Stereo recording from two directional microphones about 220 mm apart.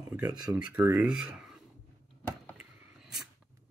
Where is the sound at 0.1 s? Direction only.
15° right (ahead or behind).